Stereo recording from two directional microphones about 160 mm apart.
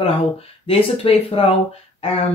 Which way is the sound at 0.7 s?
35° left (ahead or behind).